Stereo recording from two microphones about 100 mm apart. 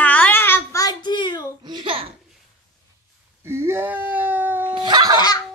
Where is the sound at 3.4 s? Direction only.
25° right (ahead or behind).